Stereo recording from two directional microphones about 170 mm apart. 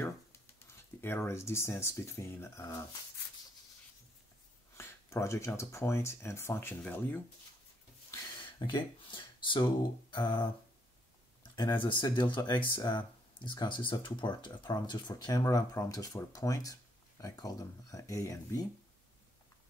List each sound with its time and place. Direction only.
1.0 s speech: 15° left (ahead or behind)
4.7 s speech: 15° left (ahead or behind)
8.1 s a sound: 25° left (ahead or behind)
9.0 s speech: 30° left (ahead or behind)
11.8 s speech: 30° left (ahead or behind)